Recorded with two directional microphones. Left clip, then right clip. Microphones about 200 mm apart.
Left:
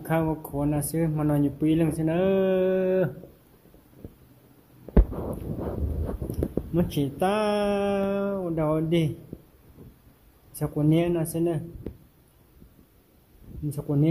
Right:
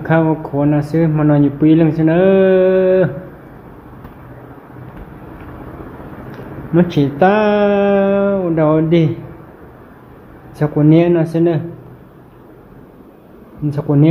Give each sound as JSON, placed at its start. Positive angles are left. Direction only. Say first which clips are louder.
{"t": 0.0, "sound": "speech", "louder": "right 12 dB", "side_deg": 15}
{"t": 6.7, "sound": "speech", "louder": "right 17 dB", "side_deg": 10}
{"t": 10.6, "sound": "speech", "louder": "right 13 dB", "side_deg": 10}
{"t": 13.7, "sound": "speech", "louder": "right 13 dB", "side_deg": 15}